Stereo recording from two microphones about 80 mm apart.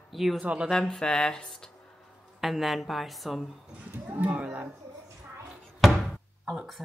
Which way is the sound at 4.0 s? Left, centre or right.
Centre.